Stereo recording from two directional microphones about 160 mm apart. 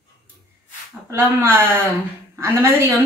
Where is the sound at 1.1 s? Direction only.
15° right (ahead or behind).